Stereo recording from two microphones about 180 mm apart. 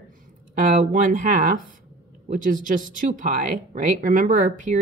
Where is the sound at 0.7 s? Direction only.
45° right (ahead or behind).